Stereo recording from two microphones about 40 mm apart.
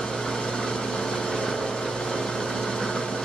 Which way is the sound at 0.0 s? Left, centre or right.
Centre.